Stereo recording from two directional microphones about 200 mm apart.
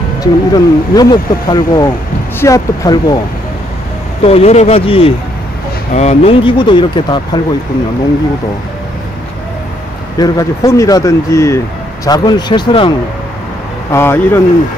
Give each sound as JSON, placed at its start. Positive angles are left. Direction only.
{"t": 0.2, "sound": "speech", "side_deg": 20}
{"t": 4.2, "sound": "speech", "side_deg": 30}
{"t": 10.1, "sound": "speech", "side_deg": 20}
{"t": 13.9, "sound": "speech", "side_deg": 10}